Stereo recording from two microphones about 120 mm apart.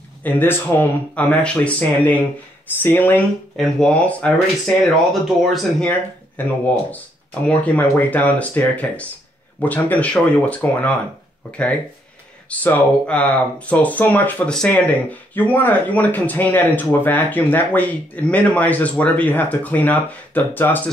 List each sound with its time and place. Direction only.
0.2 s speech: 15° left (ahead or behind)
3.5 s speech: 5° left (ahead or behind)
5.9 s speech: 15° left (ahead or behind)
12.4 s speech: 15° left (ahead or behind)